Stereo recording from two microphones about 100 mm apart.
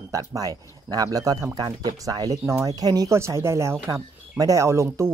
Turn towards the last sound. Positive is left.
turn(degrees=-25)  # may be behind; listen again after turning